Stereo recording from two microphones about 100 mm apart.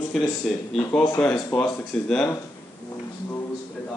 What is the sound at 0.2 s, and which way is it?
Speech, 10° left (ahead or behind).